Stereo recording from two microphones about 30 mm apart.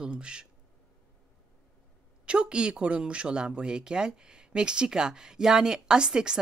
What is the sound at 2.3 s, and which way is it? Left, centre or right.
Speech, right.